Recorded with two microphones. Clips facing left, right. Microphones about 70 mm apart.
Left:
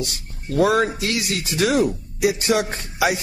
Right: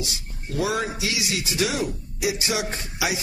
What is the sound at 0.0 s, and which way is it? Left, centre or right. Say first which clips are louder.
A man's voice: left 4 dB; left.